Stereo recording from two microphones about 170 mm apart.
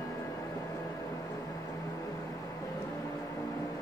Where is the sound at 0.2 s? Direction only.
20° left (ahead or behind).